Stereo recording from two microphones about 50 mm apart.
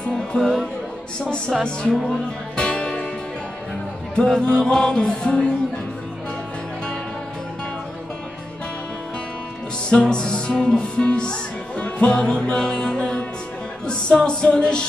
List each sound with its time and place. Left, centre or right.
0.0 s music: centre
0.4 s speech: centre
1.6 s music: centre
4.2 s music: centre
9.8 s music: centre